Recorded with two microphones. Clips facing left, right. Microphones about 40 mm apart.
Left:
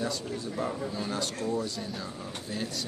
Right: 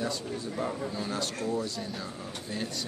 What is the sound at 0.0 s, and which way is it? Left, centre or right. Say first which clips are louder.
Speech: even; centre.